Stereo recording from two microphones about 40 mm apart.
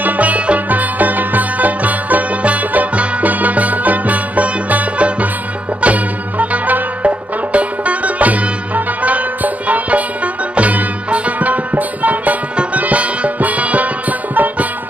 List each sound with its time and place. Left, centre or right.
0.0 s music: right